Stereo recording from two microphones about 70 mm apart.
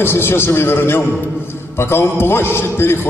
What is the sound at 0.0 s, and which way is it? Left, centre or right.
A man's voice, left.